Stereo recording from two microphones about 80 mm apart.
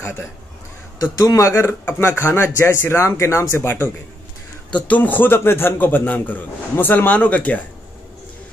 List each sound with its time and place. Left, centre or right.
0.9 s speech: left
4.7 s a man's voice: centre